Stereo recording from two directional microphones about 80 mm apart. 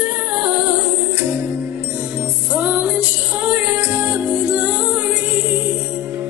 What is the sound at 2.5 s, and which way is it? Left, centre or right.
Music, centre.